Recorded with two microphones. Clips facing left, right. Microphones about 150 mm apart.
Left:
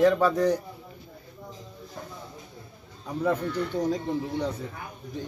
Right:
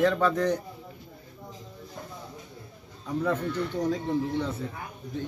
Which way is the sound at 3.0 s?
10° left (ahead or behind).